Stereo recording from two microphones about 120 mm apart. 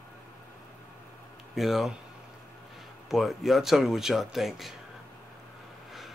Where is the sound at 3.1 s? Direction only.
Centre (ahead or behind).